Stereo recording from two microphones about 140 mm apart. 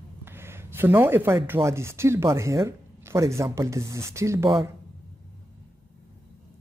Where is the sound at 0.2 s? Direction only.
15° right (ahead or behind).